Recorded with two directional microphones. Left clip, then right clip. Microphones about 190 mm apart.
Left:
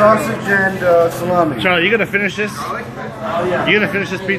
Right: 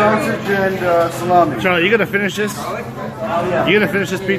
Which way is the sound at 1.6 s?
5° right (ahead or behind).